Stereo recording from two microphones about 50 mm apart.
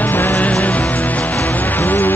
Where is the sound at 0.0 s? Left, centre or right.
Left.